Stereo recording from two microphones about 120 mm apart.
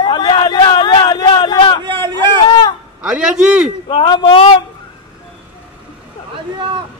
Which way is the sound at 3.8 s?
45° left (ahead or behind).